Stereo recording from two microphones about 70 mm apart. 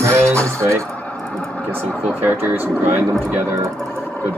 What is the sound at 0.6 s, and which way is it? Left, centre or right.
Speech, right.